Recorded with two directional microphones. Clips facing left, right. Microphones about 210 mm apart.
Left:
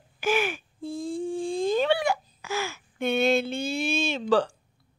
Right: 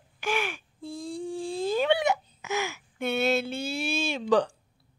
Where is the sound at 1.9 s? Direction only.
20° right (ahead or behind).